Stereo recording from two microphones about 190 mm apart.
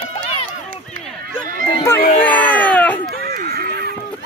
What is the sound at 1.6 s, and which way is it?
Speech, 25° left (ahead or behind).